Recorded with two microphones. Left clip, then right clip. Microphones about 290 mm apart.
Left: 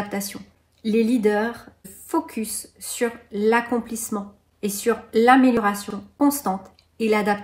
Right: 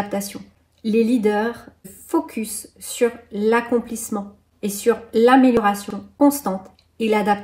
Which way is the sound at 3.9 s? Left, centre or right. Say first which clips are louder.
Right 2 dB; centre.